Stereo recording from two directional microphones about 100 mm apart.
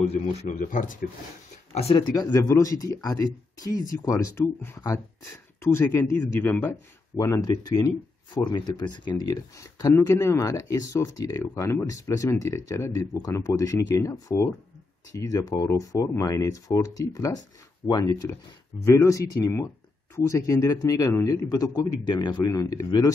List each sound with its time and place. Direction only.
1.7 s speech: 90° left
2.0 s speech: 45° left (ahead or behind)
2.3 s speech: 30° left (ahead or behind)
5.6 s a man's voice: 25° left (ahead or behind)
7.2 s speech: 35° left (ahead or behind)
9.6 s speech: 35° left (ahead or behind)
22.5 s speech: 35° left (ahead or behind)